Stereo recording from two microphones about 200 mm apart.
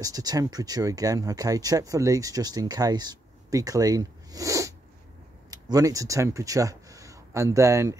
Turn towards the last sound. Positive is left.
turn(degrees=-15)  # may be behind; listen again after turning